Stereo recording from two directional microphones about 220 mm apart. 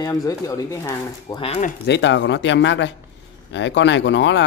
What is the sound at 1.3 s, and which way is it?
Speech, 30° left (ahead or behind).